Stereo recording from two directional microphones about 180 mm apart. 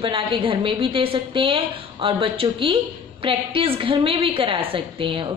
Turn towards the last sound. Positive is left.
turn(degrees=-30)  # may be behind; listen again after turning